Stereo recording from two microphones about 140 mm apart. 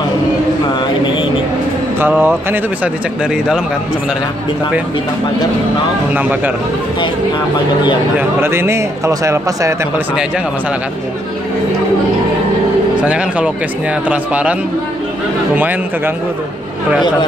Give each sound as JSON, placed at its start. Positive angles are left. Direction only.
{"t": 2.0, "sound": "speech", "side_deg": -15}
{"t": 8.2, "sound": "speech", "side_deg": -15}
{"t": 13.0, "sound": "speech", "side_deg": -10}